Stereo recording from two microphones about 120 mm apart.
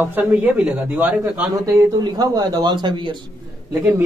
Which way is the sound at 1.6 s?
25° right (ahead or behind).